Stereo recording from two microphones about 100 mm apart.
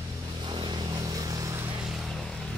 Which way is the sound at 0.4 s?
50° right (ahead or behind).